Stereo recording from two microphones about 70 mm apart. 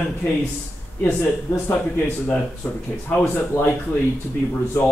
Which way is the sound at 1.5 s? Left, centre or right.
Left.